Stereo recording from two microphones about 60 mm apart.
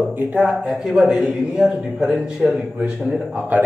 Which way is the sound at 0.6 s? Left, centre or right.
Centre.